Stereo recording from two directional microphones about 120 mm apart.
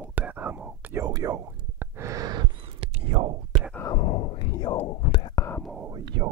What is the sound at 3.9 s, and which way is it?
Whispering, 55° left (ahead or behind).